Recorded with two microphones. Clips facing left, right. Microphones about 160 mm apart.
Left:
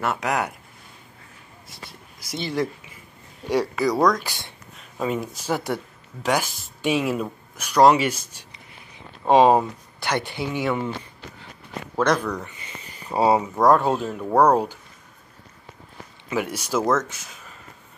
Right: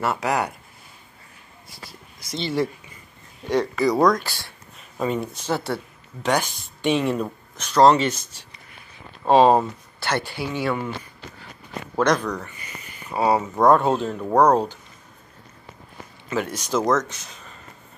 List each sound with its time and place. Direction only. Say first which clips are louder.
0.0 s speech: right 1 dB; centre (ahead or behind)
1.7 s speech: even; centre (ahead or behind)
3.8 s speech: right 2 dB; centre (ahead or behind)
4.2 s speech: even; 20° left (ahead or behind)
4.9 s speech: right 1 dB; centre (ahead or behind); by 10.9 s 20° left (ahead or behind)
12.0 s speech: right 1 dB; 5° left (ahead or behind)
12.5 s a sound: even; 30° left (ahead or behind)
13.6 s speech: right 3 dB; centre (ahead or behind)
16.3 s speech: even; 10° left (ahead or behind)